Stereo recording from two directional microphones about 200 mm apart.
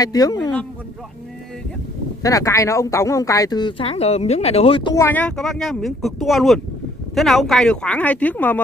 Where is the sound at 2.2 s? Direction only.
15° left (ahead or behind).